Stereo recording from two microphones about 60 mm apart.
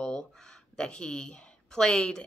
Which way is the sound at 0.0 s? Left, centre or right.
Centre.